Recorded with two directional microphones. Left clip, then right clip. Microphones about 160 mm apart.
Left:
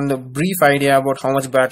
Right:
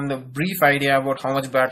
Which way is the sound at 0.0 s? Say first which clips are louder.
Left 5 dB; 40° left (ahead or behind).